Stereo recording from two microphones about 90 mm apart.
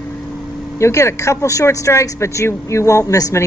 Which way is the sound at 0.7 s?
30° left (ahead or behind).